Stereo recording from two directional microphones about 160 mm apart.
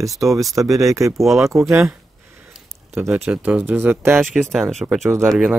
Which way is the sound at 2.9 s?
15° right (ahead or behind).